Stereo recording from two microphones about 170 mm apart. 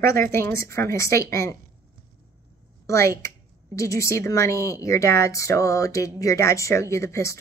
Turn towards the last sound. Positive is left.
turn(degrees=15)  # may be behind; listen again after turning